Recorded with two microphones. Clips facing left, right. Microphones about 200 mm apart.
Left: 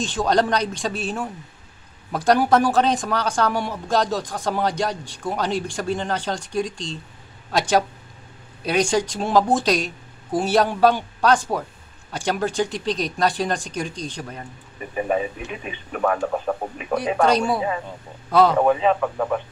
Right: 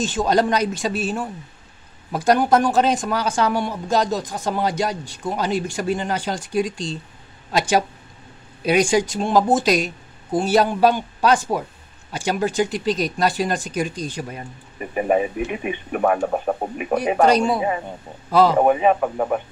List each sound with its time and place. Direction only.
0.0 s speech: 5° right (ahead or behind)
16.0 s speech: 30° right (ahead or behind)
16.3 s speech: 20° right (ahead or behind)
18.6 s speech: 20° right (ahead or behind)
18.9 s speech: 30° right (ahead or behind)